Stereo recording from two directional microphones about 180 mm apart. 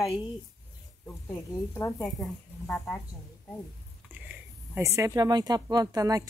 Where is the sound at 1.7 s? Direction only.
10° left (ahead or behind).